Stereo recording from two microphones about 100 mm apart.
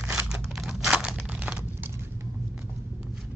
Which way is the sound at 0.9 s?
10° right (ahead or behind).